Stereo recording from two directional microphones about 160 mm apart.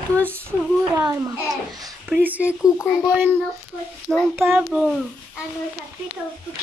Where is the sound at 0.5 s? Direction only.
15° right (ahead or behind).